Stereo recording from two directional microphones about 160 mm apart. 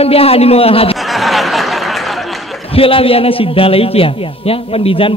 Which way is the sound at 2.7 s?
35° left (ahead or behind).